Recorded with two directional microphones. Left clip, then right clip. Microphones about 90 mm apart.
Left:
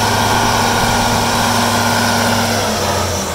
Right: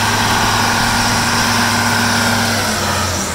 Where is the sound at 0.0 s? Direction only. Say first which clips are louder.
Left 1 dB; 35° left (ahead or behind).